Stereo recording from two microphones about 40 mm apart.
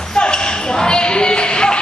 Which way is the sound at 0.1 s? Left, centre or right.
Left.